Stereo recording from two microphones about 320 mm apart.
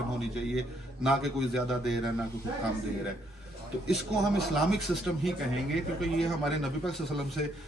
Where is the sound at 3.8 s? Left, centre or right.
Centre.